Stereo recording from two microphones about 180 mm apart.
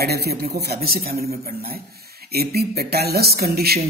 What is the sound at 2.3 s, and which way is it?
Speech, 60° right (ahead or behind).